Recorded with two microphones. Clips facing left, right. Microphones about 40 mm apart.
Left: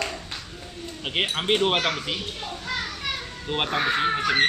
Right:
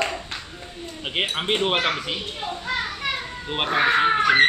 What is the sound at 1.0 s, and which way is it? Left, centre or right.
Speech, centre.